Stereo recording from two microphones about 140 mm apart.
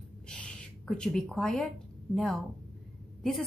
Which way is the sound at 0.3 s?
5° left (ahead or behind).